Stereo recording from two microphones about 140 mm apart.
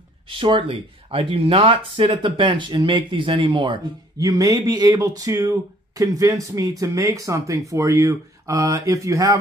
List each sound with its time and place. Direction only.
0.3 s speech: 40° right (ahead or behind); by 9.4 s 20° right (ahead or behind)